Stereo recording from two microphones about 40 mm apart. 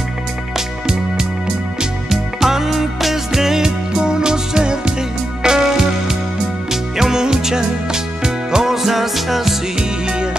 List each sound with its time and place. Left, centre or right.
0.6 s music: centre
9.8 s music: right